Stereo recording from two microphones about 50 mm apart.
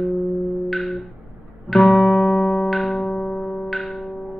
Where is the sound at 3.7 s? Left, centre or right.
Centre.